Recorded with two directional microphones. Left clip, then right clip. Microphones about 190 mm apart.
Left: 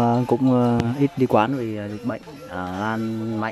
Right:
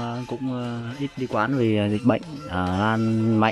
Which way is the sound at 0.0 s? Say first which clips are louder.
Left 11 dB; 25° left (ahead or behind).